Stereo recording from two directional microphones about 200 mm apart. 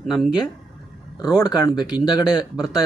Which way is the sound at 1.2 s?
20° left (ahead or behind).